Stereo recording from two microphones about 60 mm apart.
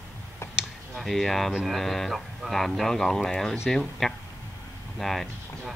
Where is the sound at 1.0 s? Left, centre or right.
Centre.